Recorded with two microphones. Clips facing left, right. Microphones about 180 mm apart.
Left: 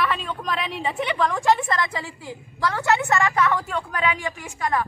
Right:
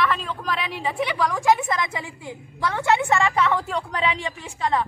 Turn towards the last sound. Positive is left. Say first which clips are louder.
# right 1 dB
turn(degrees=-25)  # may be behind; listen again after turning